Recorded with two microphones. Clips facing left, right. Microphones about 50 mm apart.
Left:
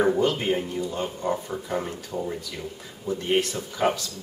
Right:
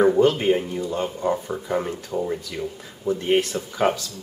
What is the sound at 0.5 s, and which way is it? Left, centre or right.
A man's voice, centre.